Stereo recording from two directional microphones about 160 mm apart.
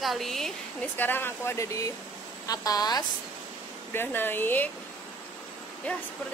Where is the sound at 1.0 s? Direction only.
15° left (ahead or behind).